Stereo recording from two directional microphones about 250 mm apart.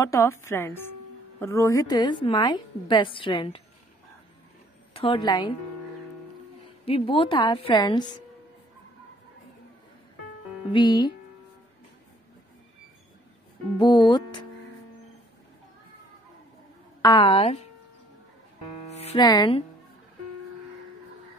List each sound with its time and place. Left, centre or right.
0.0 s a woman's voice: centre
4.9 s a woman's voice: left
6.9 s a woman's voice: left
10.7 s a woman's voice: centre
13.7 s a woman's voice: centre
17.0 s a woman's voice: centre
18.9 s music: left